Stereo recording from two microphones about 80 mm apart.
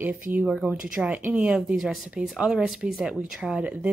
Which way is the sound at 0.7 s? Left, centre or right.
Centre.